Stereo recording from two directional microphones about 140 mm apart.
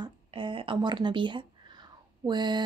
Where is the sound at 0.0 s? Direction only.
35° right (ahead or behind).